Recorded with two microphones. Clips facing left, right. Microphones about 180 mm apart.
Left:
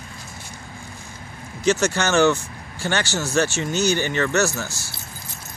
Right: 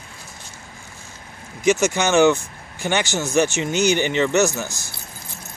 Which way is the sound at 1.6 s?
15° right (ahead or behind).